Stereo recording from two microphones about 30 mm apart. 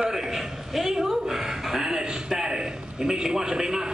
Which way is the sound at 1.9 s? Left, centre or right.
Right.